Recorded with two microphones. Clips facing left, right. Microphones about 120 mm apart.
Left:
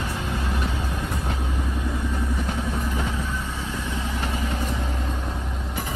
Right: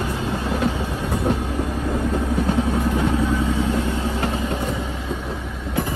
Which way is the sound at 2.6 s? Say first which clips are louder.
Right 7 dB; 65° right (ahead or behind).